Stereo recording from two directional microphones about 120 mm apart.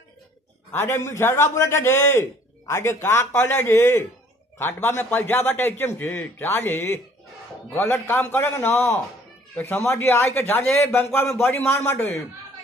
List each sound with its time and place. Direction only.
0.7 s a man's voice: 20° left (ahead or behind)